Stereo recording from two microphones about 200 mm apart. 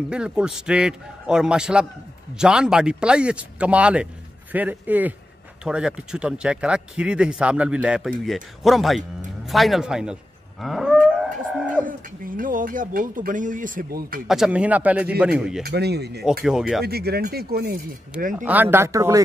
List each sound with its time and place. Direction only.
0.1 s a man's voice: 5° right (ahead or behind)
10.6 s livestock: centre (ahead or behind)
11.8 s speech: 45° right (ahead or behind)
14.2 s speech: centre (ahead or behind)
15.6 s speech: 55° right (ahead or behind)
16.4 s a man's voice: centre (ahead or behind)
16.8 s speech: 50° right (ahead or behind)
18.4 s speech: 10° right (ahead or behind)